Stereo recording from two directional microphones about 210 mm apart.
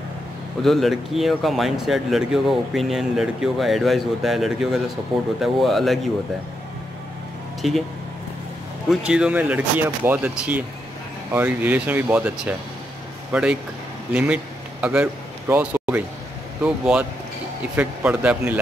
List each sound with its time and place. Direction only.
0.6 s speech: centre (ahead or behind)
7.6 s speech: centre (ahead or behind)
8.8 s speech: 5° right (ahead or behind)